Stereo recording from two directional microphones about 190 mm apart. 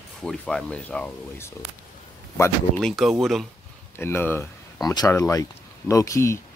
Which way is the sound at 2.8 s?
Centre (ahead or behind).